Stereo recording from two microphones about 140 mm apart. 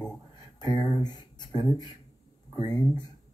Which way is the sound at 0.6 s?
30° left (ahead or behind).